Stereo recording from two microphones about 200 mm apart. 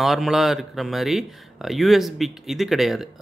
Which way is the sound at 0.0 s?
Centre (ahead or behind).